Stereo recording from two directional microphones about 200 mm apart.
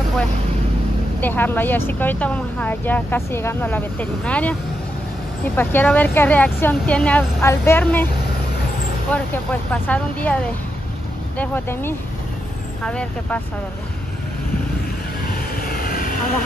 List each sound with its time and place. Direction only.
1.2 s speech: 10° left (ahead or behind)
9.1 s speech: 5° left (ahead or behind)
15.3 s vehicle: 50° left (ahead or behind)